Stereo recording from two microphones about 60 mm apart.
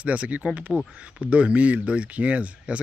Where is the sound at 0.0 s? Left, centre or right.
Right.